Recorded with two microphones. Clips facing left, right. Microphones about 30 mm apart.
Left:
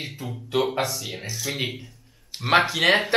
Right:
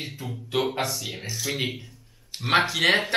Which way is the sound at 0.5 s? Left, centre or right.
Centre.